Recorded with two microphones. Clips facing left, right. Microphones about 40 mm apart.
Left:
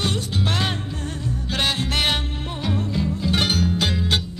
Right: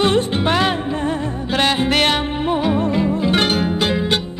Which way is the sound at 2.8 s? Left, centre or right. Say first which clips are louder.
Right 7 dB; right.